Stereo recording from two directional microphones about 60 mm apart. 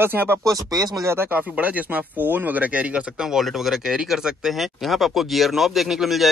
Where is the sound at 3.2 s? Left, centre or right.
Centre.